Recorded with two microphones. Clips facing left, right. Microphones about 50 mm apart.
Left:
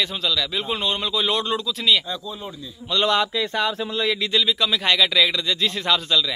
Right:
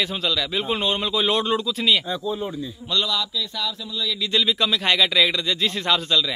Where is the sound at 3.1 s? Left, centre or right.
Left.